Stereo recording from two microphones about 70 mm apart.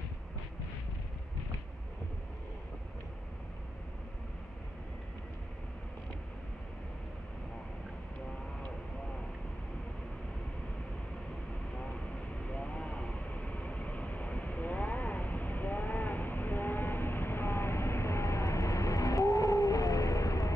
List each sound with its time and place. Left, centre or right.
12.4 s vehicle: centre; by 20.5 s left